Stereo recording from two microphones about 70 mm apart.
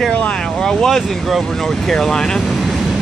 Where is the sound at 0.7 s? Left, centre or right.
Centre.